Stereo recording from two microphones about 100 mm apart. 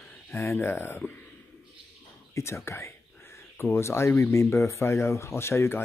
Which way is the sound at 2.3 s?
25° left (ahead or behind).